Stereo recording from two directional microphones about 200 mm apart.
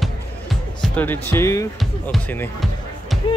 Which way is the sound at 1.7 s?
5° left (ahead or behind).